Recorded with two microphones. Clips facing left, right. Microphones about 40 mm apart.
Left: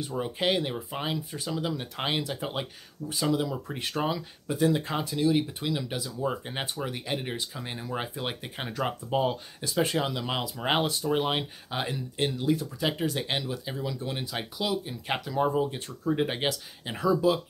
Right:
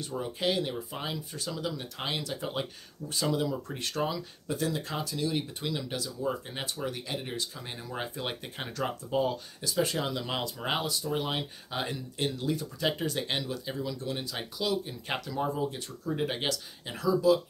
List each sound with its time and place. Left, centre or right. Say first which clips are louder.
0.2 s speech: left 3 dB; left
3.1 s speech: left 2 dB; centre
4.7 s speech: left 4 dB; left
5.1 s speech: left 8 dB; centre
6.0 s speech: left 2 dB; left
10.9 s speech: left 4 dB; left
11.7 s speech: left 2 dB; centre
17.0 s speech: even; left